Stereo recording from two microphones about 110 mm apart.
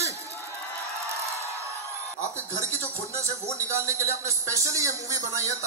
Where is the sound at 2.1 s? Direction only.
25° right (ahead or behind).